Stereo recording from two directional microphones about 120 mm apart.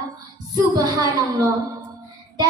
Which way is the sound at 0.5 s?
30° right (ahead or behind).